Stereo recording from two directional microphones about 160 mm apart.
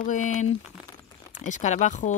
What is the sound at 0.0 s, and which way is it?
Speech, 50° left (ahead or behind).